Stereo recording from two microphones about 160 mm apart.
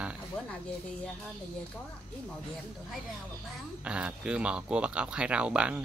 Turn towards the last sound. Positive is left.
turn(degrees=-5)  # may be behind; listen again after turning